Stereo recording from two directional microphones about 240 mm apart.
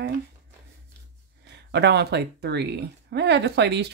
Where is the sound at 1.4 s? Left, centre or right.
Right.